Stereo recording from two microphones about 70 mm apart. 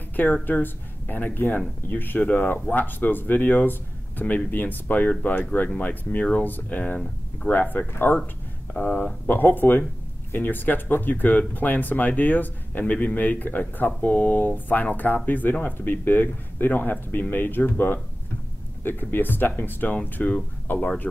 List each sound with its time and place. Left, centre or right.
0.1 s speech: left